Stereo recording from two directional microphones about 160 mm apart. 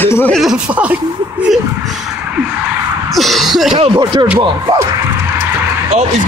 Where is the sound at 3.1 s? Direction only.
Centre (ahead or behind).